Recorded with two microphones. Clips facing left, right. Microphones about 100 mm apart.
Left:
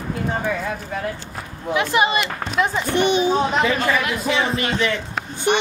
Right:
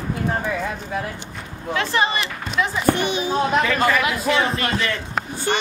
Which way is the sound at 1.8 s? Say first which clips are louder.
Left 3 dB; 15° left (ahead or behind).